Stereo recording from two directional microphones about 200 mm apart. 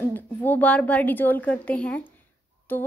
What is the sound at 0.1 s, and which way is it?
A woman's voice, 10° left (ahead or behind).